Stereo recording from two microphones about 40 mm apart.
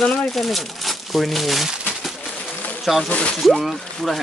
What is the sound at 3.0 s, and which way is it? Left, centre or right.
Speech, left.